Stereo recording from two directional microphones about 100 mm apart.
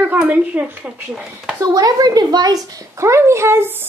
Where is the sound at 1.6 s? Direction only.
40° right (ahead or behind).